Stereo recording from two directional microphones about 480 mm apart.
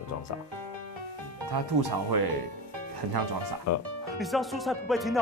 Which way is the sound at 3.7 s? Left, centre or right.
Left.